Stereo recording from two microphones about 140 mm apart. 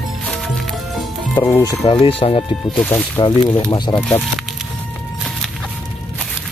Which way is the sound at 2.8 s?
15° left (ahead or behind).